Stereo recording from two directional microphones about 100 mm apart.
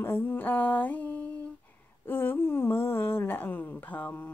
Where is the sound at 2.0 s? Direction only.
20° left (ahead or behind).